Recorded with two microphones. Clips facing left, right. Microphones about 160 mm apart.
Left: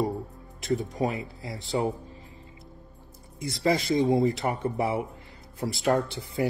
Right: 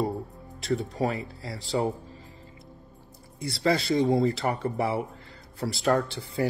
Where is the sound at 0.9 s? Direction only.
20° left (ahead or behind).